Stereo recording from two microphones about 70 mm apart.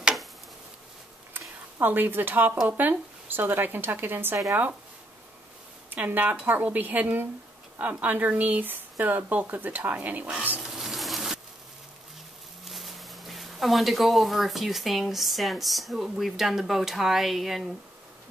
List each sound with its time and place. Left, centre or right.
1.8 s speech: right
5.9 s speech: right
10.6 s a sound: centre
12.6 s speech: centre